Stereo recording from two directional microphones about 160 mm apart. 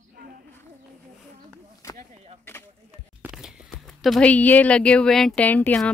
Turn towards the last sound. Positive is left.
turn(degrees=10)  # may be behind; listen again after turning